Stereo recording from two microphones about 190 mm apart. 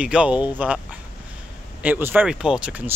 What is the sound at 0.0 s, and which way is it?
A man's voice, 5° right (ahead or behind).